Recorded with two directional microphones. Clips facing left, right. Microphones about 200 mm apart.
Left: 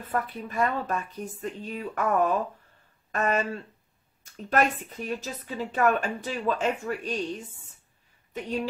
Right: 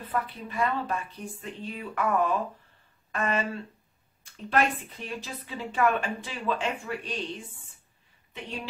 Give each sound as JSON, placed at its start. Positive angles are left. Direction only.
{"t": 0.1, "sound": "speech", "side_deg": 45}
{"t": 8.3, "sound": "speech", "side_deg": 40}